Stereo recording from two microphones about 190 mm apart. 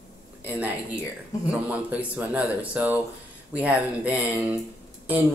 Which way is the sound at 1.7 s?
10° right (ahead or behind).